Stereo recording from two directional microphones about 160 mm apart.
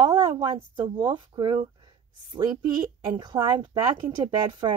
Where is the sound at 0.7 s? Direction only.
30° right (ahead or behind).